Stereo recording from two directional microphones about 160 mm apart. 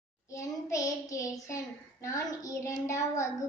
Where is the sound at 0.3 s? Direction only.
20° left (ahead or behind).